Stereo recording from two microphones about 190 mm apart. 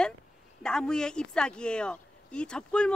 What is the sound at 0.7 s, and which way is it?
Speech, 5° left (ahead or behind).